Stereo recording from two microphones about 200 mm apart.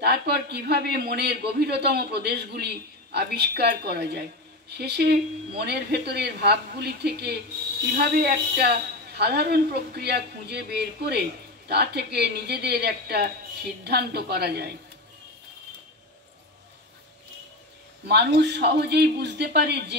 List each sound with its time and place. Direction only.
0.0 s a woman's voice: 55° right (ahead or behind)
18.0 s a woman's voice: 55° right (ahead or behind)